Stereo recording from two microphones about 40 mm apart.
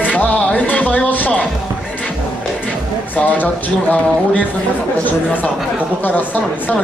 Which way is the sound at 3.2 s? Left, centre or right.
Left.